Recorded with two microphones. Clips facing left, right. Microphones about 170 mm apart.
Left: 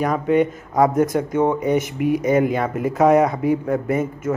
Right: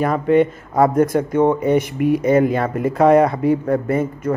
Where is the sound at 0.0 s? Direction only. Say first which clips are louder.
Right 3 dB; centre (ahead or behind).